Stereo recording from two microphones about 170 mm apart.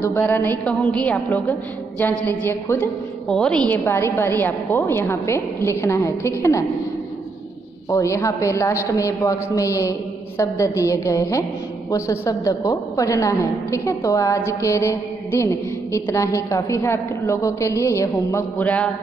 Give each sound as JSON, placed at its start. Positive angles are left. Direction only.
{"t": 0.0, "sound": "a woman's voice", "side_deg": 15}
{"t": 7.9, "sound": "a man's voice", "side_deg": 15}